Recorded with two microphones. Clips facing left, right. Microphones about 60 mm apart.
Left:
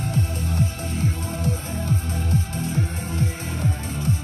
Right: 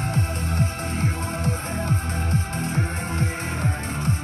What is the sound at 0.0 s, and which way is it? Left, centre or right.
Music, right.